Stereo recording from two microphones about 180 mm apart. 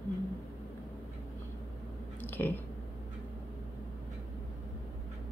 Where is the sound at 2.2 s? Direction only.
10° left (ahead or behind).